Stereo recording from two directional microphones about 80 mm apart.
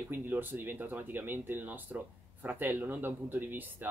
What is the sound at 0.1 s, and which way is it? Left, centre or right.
Speech, right.